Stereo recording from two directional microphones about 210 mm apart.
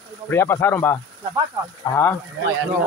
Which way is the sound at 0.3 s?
10° left (ahead or behind).